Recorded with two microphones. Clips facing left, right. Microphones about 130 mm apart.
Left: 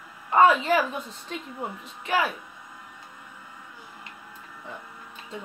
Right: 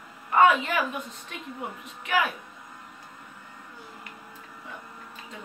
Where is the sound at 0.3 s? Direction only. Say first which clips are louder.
Left 1 dB; 25° left (ahead or behind).